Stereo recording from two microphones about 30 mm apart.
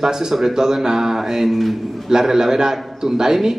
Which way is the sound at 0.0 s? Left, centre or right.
Centre.